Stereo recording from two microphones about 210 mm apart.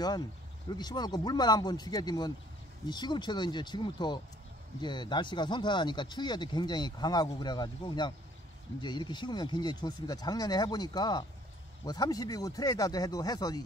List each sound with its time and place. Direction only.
0.7 s speech: 20° left (ahead or behind)